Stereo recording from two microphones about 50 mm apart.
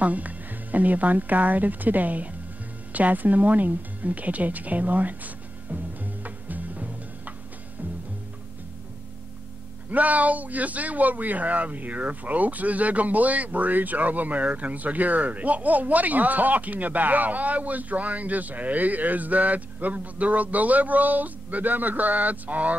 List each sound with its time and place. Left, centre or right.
0.0 s speech: right
6.2 s music: right
9.8 s speech: right